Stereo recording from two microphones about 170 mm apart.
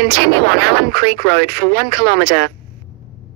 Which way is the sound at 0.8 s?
65° right (ahead or behind).